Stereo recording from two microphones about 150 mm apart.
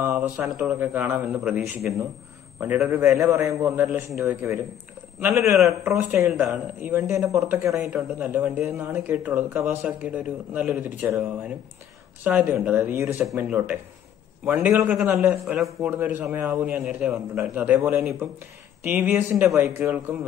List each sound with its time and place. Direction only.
0.1 s speech: 10° right (ahead or behind)
5.7 s speech: 20° right (ahead or behind)
6.4 s speech: centre (ahead or behind)
6.9 s speech: 20° right (ahead or behind)